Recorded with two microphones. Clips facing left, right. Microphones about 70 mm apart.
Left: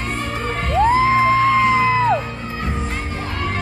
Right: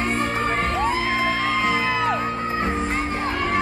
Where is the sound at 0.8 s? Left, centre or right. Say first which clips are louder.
Left 8 dB; left.